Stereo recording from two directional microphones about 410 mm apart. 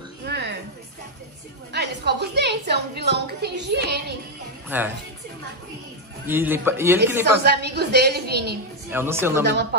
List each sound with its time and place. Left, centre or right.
0.3 s a sound: right
1.7 s a woman's voice: right
4.6 s a woman's voice: centre
6.2 s a man's voice: centre
7.4 s a woman's voice: right
8.9 s a man's voice: centre
9.5 s a woman's voice: right